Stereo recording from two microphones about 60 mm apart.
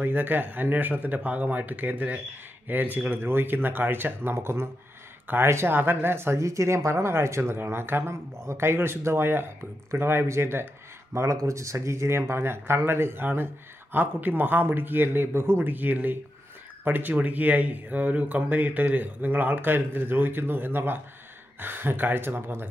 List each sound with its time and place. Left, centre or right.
0.0 s speech: right
11.1 s speech: right